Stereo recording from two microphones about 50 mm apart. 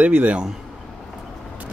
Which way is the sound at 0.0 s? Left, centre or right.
Right.